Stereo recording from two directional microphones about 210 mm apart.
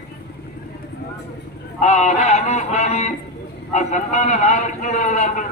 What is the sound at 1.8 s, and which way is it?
A man's voice, 35° left (ahead or behind).